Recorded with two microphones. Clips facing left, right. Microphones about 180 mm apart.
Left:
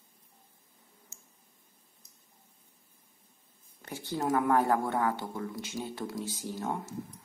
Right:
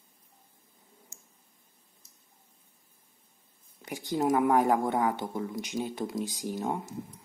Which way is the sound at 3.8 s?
15° right (ahead or behind).